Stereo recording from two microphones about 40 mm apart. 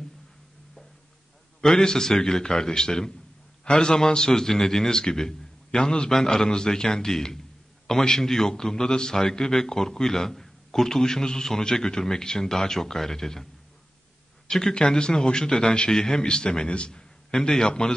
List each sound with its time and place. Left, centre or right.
1.6 s a man's voice: centre
14.5 s a man's voice: centre
17.3 s a man's voice: centre